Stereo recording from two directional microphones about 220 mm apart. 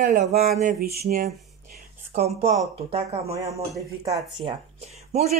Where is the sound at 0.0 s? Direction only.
35° right (ahead or behind).